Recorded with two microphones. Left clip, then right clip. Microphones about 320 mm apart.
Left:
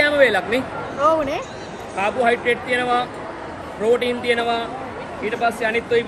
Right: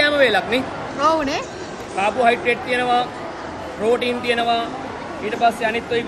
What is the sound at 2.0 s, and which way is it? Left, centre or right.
Speech, centre.